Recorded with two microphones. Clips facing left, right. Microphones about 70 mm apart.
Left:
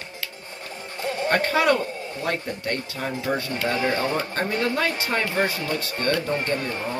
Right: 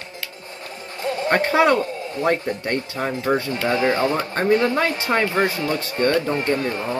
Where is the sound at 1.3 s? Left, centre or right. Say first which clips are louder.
Right 4 dB; right.